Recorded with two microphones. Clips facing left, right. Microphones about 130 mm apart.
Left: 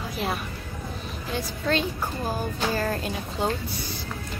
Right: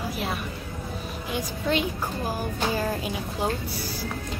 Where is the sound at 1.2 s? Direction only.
15° right (ahead or behind).